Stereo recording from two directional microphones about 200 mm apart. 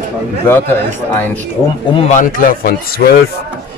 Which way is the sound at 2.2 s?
45° left (ahead or behind).